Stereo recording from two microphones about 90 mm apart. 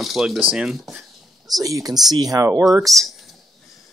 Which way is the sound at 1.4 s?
40° right (ahead or behind).